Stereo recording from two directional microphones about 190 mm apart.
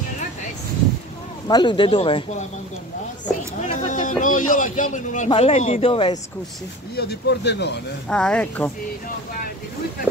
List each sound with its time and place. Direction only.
1.5 s speech: 25° left (ahead or behind)
3.6 s a sound: 40° left (ahead or behind)
4.2 s a man's voice: 45° left (ahead or behind)
5.3 s speech: 30° left (ahead or behind)
7.0 s speech: 60° left (ahead or behind)
8.1 s speech: 5° left (ahead or behind)